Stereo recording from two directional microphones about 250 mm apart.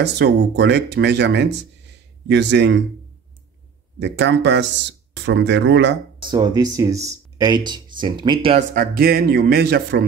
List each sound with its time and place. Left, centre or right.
0.0 s speech: right
4.0 s speech: right
6.2 s speech: centre
8.7 s speech: right